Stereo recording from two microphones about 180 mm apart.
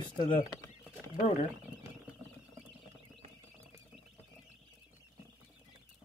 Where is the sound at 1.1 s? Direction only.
40° left (ahead or behind).